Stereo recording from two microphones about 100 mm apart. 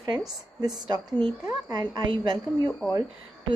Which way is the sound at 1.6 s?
45° right (ahead or behind).